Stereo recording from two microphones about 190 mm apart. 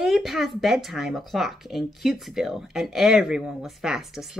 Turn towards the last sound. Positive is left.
turn(degrees=0)  # may be behind; listen again after turning